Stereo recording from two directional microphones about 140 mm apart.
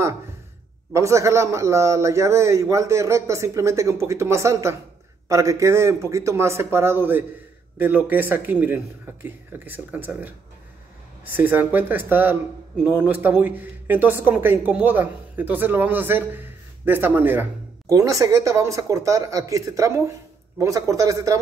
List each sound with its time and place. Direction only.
0.9 s a man's voice: 20° right (ahead or behind)